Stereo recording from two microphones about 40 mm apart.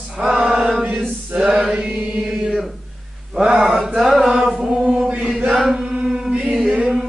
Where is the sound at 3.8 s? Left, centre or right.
Centre.